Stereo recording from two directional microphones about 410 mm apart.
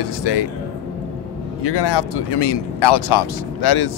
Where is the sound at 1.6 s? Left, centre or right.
Left.